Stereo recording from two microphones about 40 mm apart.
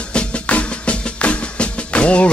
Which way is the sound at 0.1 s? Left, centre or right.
Left.